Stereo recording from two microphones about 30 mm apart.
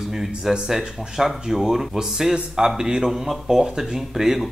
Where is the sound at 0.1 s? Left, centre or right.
Centre.